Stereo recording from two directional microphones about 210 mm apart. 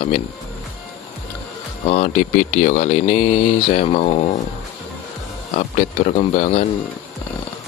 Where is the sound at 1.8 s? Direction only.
35° left (ahead or behind).